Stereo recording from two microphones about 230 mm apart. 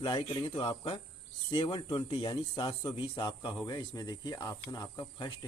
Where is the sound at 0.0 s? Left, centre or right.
Left.